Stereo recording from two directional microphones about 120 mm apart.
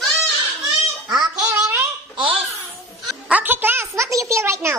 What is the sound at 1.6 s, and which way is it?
Babbling, 20° right (ahead or behind).